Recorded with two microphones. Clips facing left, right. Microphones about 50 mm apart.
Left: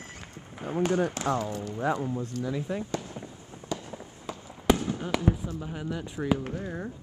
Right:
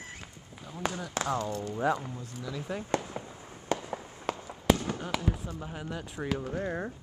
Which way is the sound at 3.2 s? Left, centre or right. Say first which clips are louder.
Even; right.